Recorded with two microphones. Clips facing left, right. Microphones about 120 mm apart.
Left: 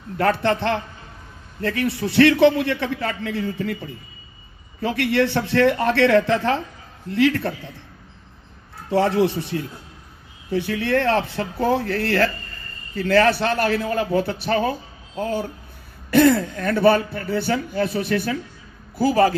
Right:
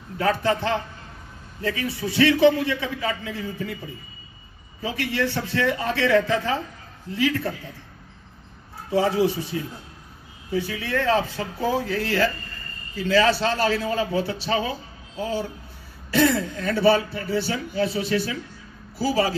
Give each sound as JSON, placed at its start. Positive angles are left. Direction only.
{"t": 0.2, "sound": "a man's voice", "side_deg": 65}
{"t": 4.8, "sound": "a man's voice", "side_deg": 65}
{"t": 8.9, "sound": "a man's voice", "side_deg": 65}